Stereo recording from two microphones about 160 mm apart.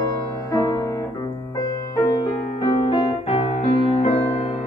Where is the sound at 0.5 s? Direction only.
20° left (ahead or behind).